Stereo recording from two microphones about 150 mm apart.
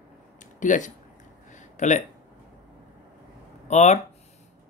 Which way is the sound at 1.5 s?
55° left (ahead or behind).